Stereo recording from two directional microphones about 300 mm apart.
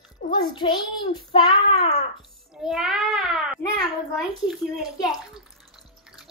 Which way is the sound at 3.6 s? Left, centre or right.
Centre.